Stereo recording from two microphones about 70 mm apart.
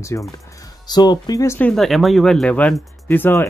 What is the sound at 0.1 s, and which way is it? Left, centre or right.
Speech, left.